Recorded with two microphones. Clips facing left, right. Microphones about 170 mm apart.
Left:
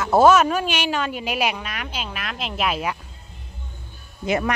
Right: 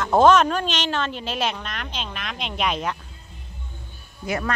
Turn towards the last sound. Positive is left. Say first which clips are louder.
# left 4 dB
turn(degrees=20)  # may be behind; listen again after turning